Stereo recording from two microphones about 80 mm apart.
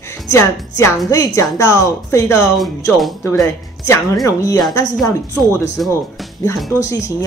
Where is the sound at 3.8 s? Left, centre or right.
Left.